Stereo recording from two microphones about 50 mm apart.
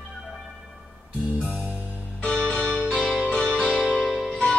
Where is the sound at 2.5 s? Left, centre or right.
Right.